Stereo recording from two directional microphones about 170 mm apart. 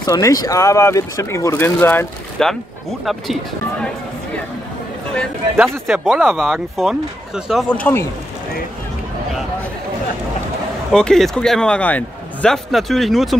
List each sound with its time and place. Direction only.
0.0 s speech: 20° left (ahead or behind)
5.6 s a man's voice: 5° right (ahead or behind)
7.7 s speech: 10° left (ahead or behind)
10.9 s a man's voice: 5° left (ahead or behind)